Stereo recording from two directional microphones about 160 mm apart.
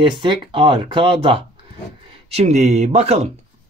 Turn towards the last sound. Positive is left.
turn(degrees=-40)  # may be behind; listen again after turning